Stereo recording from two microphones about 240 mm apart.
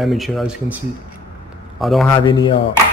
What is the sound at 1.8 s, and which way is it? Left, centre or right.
Speech, centre.